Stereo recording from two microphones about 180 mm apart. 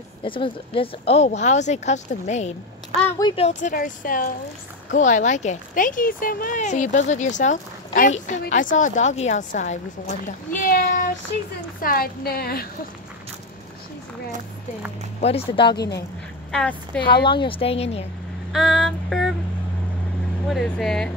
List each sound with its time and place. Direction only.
0.2 s speech: 30° left (ahead or behind)
3.2 s a woman's voice: 25° left (ahead or behind)
3.4 s a woman's voice: 45° left (ahead or behind)
15.1 s speech: 35° left (ahead or behind)
15.7 s a woman's voice: 65° left (ahead or behind)
16.5 s speech: 5° left (ahead or behind)
17.0 s a woman's voice: 25° left (ahead or behind)
18.5 s female singing: centre (ahead or behind)
20.4 s speech: centre (ahead or behind)